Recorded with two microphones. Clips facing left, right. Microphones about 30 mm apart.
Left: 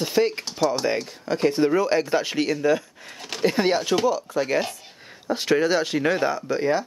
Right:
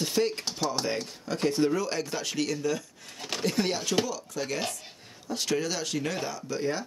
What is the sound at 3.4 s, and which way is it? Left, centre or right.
Speech, left.